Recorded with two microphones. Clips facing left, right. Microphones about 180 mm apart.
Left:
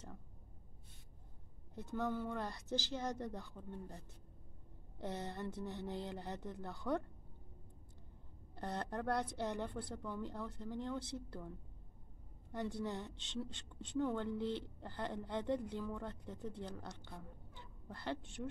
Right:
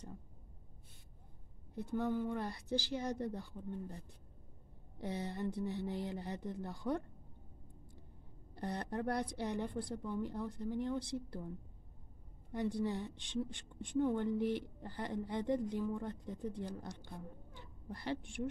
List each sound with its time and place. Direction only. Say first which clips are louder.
1.8 s a woman's voice: right 4 dB; 15° right (ahead or behind)
5.0 s a woman's voice: right 3 dB; 15° right (ahead or behind)
8.5 s a woman's voice: right 2 dB; 15° right (ahead or behind)
12.5 s a woman's voice: right 4 dB; 15° right (ahead or behind)